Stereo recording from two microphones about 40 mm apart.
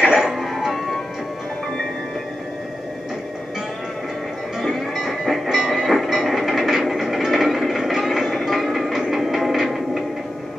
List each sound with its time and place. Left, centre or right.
0.0 s music: centre
0.7 s music: centre
4.6 s music: centre
8.3 s music: centre